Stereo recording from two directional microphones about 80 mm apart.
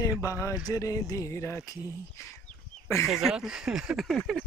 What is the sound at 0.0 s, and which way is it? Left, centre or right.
Speech, left.